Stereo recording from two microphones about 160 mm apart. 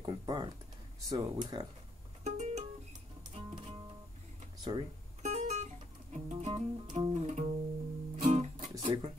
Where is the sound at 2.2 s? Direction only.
45° right (ahead or behind).